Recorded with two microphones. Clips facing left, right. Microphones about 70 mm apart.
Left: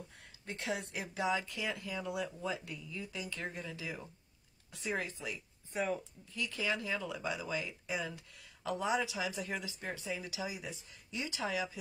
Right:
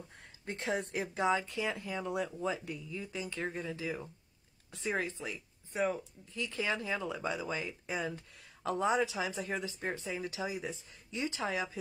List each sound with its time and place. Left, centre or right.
0.5 s speech: right